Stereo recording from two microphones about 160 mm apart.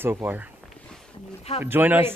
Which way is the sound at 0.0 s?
15° right (ahead or behind).